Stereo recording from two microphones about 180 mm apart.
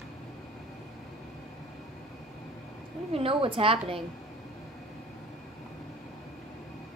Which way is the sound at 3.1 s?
30° right (ahead or behind).